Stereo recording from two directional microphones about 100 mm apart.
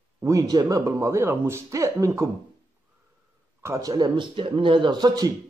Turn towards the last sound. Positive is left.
turn(degrees=-45)  # may be behind; listen again after turning